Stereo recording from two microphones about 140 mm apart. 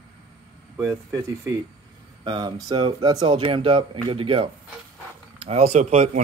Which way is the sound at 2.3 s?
35° right (ahead or behind).